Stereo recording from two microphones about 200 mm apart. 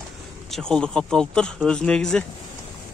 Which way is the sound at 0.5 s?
5° left (ahead or behind).